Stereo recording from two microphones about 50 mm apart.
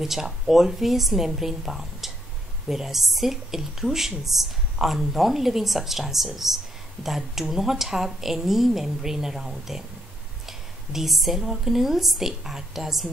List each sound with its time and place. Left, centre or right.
0.0 s a woman's voice: centre